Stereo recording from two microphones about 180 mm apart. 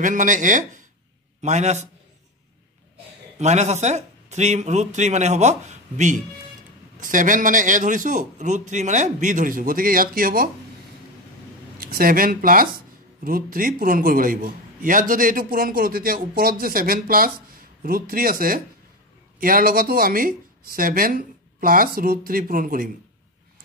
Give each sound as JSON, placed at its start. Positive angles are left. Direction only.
{"t": 0.0, "sound": "a man's voice", "side_deg": -45}
{"t": 3.3, "sound": "a man's voice", "side_deg": -40}
{"t": 11.8, "sound": "a man's voice", "side_deg": -55}